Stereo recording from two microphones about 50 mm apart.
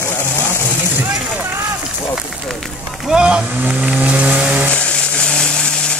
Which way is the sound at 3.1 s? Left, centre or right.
Centre.